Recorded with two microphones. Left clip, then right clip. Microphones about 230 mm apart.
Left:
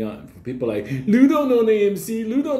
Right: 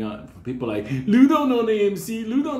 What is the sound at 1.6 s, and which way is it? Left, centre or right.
Speech, right.